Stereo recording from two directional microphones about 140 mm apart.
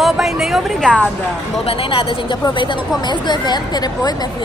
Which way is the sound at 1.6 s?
45° left (ahead or behind).